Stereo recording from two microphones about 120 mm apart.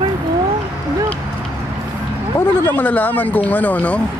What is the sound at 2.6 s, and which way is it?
Speech, 15° left (ahead or behind).